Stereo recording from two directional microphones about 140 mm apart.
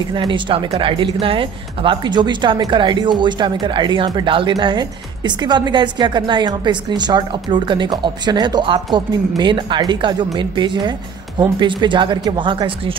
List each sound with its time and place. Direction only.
0.1 s speech: 35° right (ahead or behind)